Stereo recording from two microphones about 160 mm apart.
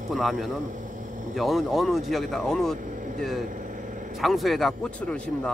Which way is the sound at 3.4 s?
55° right (ahead or behind).